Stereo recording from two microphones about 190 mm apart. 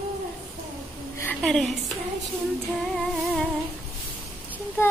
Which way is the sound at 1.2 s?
Centre (ahead or behind).